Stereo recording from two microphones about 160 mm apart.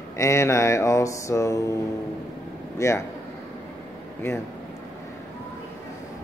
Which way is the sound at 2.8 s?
20° left (ahead or behind).